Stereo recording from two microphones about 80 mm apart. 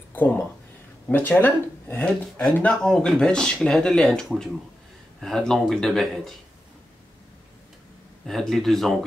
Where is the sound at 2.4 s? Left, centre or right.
Centre.